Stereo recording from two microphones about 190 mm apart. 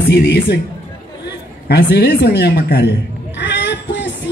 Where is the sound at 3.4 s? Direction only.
65° left (ahead or behind).